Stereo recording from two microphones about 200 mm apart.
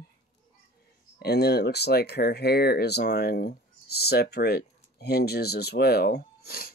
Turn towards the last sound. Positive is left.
turn(degrees=50)  # may be behind; listen again after turning